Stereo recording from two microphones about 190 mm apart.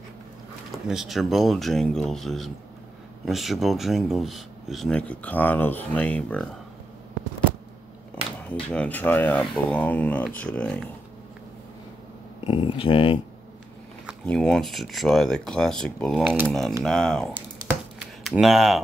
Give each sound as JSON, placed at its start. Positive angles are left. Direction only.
{"t": 0.8, "sound": "speech", "side_deg": 0}
{"t": 8.5, "sound": "speech", "side_deg": 5}
{"t": 12.4, "sound": "speech", "side_deg": 30}
{"t": 14.2, "sound": "speech", "side_deg": 5}
{"t": 17.9, "sound": "a sound", "side_deg": 0}